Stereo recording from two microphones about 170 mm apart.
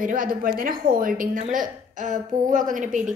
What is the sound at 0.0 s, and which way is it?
A woman's voice, 55° right (ahead or behind).